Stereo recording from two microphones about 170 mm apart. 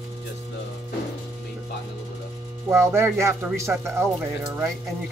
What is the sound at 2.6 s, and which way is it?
Speech, 15° right (ahead or behind).